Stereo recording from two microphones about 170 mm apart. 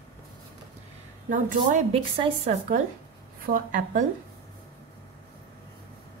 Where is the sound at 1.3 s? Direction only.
50° right (ahead or behind).